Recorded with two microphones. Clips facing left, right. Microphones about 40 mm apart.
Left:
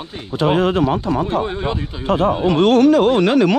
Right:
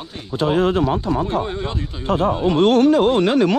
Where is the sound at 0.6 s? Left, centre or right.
Left.